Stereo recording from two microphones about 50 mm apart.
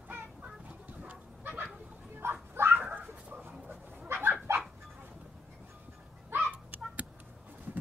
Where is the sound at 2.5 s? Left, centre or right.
Right.